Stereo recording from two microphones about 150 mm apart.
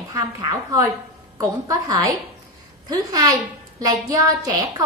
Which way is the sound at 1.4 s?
25° right (ahead or behind).